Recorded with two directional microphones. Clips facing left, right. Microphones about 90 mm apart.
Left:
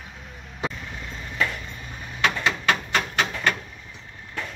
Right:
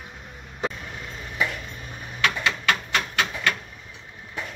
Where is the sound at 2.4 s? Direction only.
30° left (ahead or behind).